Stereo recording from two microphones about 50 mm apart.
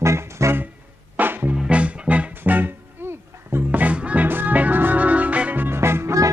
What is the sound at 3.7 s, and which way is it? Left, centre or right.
Music, right.